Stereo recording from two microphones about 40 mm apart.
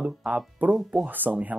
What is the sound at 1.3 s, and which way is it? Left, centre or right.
Speech, right.